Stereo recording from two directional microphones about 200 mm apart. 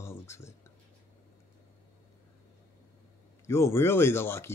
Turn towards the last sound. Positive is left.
turn(degrees=10)  # may be behind; listen again after turning